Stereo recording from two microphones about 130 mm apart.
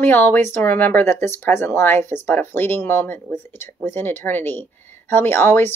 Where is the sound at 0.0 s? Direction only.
15° left (ahead or behind).